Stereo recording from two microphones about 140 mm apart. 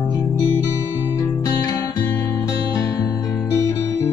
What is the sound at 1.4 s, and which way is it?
Music, 25° left (ahead or behind).